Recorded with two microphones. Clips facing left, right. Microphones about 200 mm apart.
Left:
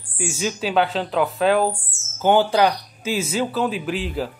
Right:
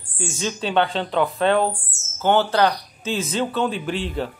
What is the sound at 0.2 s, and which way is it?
A man's voice, 10° left (ahead or behind).